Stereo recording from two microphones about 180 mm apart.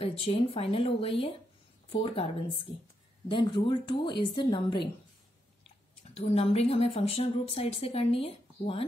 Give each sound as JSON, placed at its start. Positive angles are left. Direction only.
{"t": 0.0, "sound": "a woman's voice", "side_deg": 30}
{"t": 6.1, "sound": "speech", "side_deg": 35}